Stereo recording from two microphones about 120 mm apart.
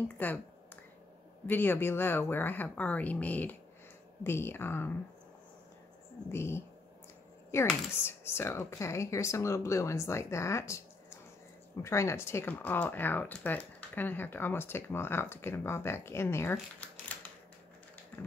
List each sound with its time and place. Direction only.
0.2 s speech: 15° left (ahead or behind)
1.5 s speech: 15° left (ahead or behind)
6.3 s speech: 20° left (ahead or behind)